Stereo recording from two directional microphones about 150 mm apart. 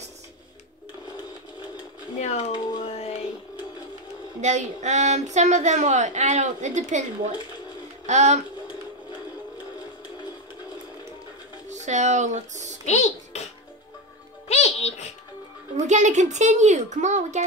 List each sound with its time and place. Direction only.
2.1 s speech: 50° left (ahead or behind)
2.8 s music: 45° left (ahead or behind)
4.4 s a woman's voice: 50° right (ahead or behind)
8.1 s a woman's voice: 50° right (ahead or behind)
11.7 s speech: 55° right (ahead or behind)
12.8 s music: 50° left (ahead or behind)
14.5 s music: 45° left (ahead or behind)
15.9 s a woman's voice: 55° right (ahead or behind)